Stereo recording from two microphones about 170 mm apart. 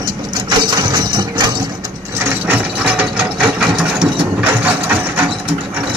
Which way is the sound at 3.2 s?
5° right (ahead or behind).